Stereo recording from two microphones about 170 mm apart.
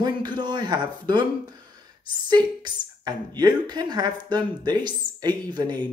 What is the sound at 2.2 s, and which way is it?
Speech, 25° right (ahead or behind).